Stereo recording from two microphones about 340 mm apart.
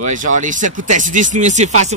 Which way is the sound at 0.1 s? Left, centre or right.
Right.